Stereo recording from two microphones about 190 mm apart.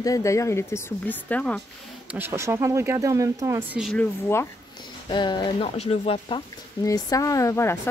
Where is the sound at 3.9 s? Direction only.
15° left (ahead or behind).